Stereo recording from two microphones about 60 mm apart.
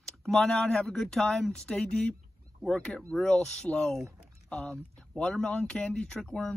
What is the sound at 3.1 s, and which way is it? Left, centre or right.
Speech, centre.